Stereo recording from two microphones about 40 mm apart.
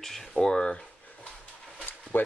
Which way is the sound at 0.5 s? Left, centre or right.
Left.